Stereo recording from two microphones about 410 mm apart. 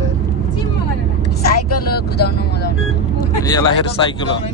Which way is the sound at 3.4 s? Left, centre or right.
Centre.